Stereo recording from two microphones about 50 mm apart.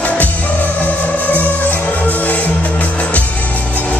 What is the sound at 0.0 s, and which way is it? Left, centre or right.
Music, left.